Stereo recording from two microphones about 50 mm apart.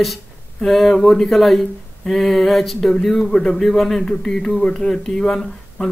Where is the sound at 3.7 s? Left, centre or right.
Centre.